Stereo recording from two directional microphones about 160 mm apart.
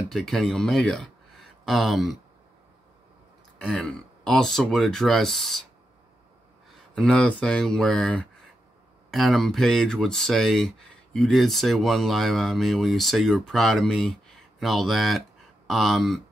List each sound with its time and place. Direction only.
0.1 s speech: 5° left (ahead or behind)
3.6 s speech: 5° left (ahead or behind)
7.0 s speech: 5° left (ahead or behind)